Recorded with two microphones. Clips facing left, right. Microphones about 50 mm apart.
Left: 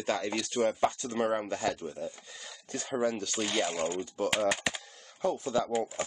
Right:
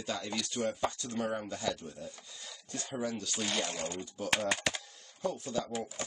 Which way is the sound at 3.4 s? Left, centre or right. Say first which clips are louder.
Left 4 dB; centre.